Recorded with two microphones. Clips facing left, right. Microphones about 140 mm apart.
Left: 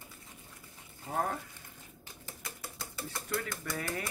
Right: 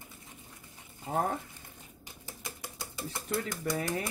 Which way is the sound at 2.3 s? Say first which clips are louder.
Right 2 dB; 20° right (ahead or behind).